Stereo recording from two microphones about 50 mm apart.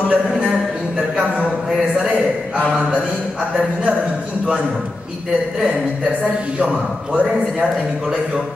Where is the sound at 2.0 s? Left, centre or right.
Centre.